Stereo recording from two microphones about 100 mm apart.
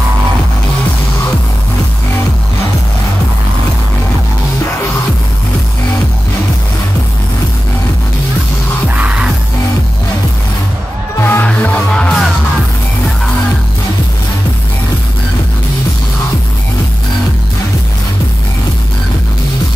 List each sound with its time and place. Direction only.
8.9 s music: 10° right (ahead or behind)
11.1 s music: 25° left (ahead or behind)
11.4 s music: 15° left (ahead or behind)